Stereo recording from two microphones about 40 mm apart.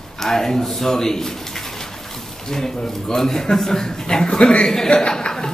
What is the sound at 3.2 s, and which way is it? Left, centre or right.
A man's voice, centre.